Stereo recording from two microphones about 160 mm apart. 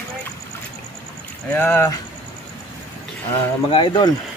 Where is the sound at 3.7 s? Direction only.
30° left (ahead or behind).